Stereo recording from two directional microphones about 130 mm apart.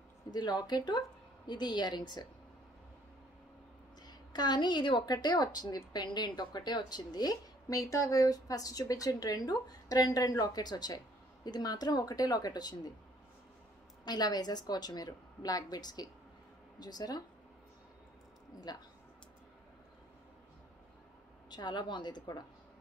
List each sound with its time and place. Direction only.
0.3 s a woman's voice: 30° left (ahead or behind)
4.0 s a woman's voice: 30° left (ahead or behind)
14.0 s a woman's voice: 30° left (ahead or behind)
18.7 s a woman's voice: 30° left (ahead or behind)
21.5 s a woman's voice: 35° left (ahead or behind)